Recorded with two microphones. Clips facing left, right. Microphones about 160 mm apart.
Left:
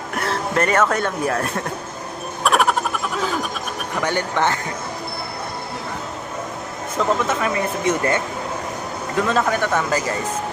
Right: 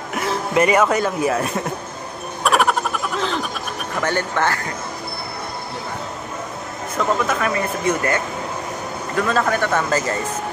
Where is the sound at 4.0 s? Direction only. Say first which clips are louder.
Even; 15° left (ahead or behind).